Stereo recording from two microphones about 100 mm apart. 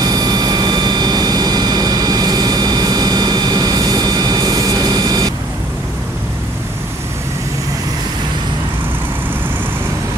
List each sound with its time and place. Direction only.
0.0 s vehicle: 40° right (ahead or behind)